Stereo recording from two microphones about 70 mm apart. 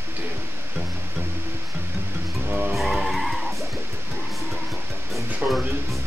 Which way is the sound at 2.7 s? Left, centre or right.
Centre.